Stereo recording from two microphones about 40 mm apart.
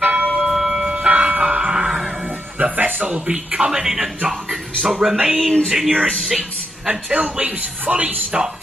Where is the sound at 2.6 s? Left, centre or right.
Right.